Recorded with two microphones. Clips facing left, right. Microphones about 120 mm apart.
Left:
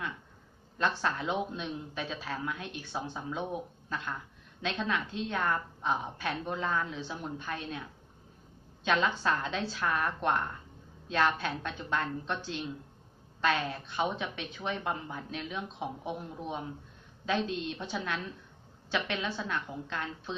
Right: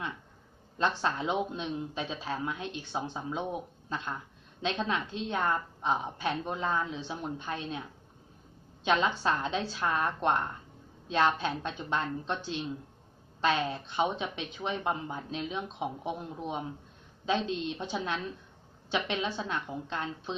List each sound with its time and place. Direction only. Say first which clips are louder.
0.7 s speech: right 1 dB; 20° right (ahead or behind)
8.8 s a woman's voice: right 1 dB; 15° right (ahead or behind)
13.4 s speech: right 2 dB; 20° right (ahead or behind)